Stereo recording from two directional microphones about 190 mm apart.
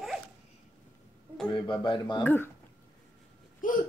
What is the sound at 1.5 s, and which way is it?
Speech, 25° left (ahead or behind).